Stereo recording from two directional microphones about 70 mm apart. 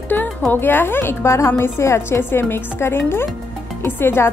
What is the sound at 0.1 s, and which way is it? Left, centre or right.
Speech, left.